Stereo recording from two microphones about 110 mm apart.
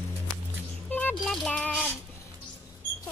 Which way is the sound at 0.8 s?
15° left (ahead or behind).